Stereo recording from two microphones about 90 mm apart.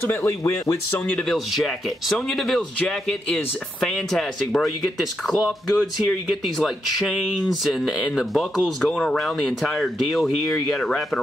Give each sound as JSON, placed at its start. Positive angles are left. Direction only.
{"t": 0.1, "sound": "speech", "side_deg": 35}
{"t": 1.3, "sound": "speech", "side_deg": 0}
{"t": 10.5, "sound": "speech", "side_deg": 15}